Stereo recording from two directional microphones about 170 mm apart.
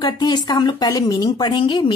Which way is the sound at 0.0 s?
25° left (ahead or behind).